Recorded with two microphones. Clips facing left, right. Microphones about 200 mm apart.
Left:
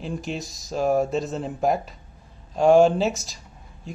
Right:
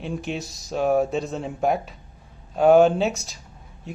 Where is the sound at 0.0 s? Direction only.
Centre (ahead or behind).